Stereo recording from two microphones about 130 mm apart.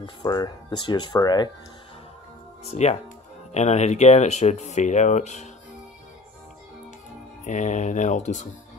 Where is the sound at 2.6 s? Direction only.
60° left (ahead or behind).